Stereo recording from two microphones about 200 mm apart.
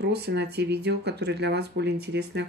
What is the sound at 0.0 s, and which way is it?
Speech, 55° right (ahead or behind).